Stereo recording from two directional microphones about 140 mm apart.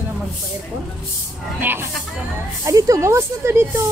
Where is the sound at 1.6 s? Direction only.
15° right (ahead or behind).